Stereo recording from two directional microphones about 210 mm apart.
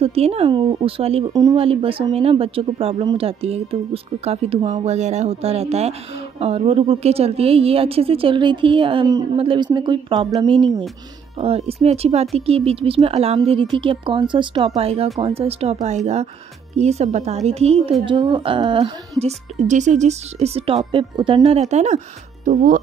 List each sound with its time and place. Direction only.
0.0 s a woman's voice: 30° right (ahead or behind)